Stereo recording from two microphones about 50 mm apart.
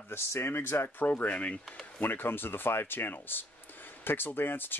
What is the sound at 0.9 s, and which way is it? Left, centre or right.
Speech, left.